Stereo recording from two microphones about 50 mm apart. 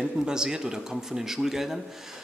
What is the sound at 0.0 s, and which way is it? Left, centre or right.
A man's voice, centre.